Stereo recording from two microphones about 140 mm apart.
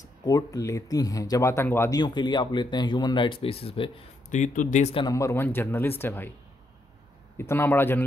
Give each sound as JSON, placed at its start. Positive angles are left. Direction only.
{"t": 0.2, "sound": "speech", "side_deg": 25}
{"t": 2.0, "sound": "speech", "side_deg": 30}
{"t": 4.3, "sound": "speech", "side_deg": 65}
{"t": 5.1, "sound": "speech", "side_deg": 20}
{"t": 7.3, "sound": "speech", "side_deg": 15}